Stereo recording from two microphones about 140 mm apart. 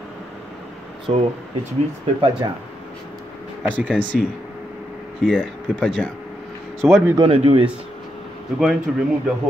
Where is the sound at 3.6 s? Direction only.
10° right (ahead or behind).